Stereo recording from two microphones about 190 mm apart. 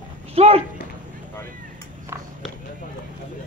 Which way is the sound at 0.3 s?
35° right (ahead or behind).